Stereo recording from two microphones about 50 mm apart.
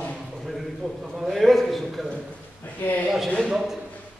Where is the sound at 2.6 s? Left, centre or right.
Left.